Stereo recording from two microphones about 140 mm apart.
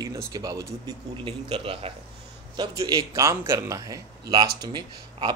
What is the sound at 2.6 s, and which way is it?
A man's voice, 30° right (ahead or behind).